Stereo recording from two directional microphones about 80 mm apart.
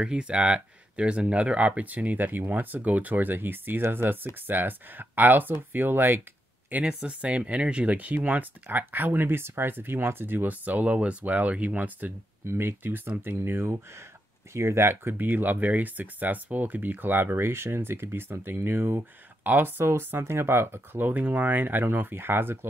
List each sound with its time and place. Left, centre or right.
0.0 s speech: centre
6.7 s speech: centre
12.4 s speech: right